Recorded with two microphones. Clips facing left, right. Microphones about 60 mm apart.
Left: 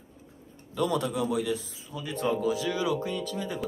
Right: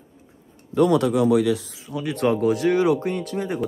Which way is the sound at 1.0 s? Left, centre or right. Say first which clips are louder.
Right 10 dB; right.